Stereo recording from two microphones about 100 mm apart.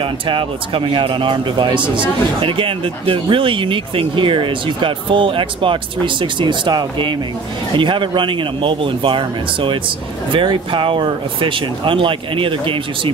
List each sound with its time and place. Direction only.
0.0 s speech: 60° right (ahead or behind)